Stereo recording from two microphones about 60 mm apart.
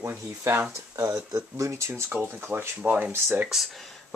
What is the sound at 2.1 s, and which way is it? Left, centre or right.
Speech, right.